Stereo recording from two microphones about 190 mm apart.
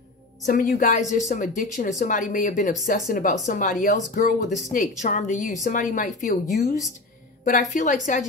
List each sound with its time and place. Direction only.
0.5 s a woman's voice: 45° left (ahead or behind)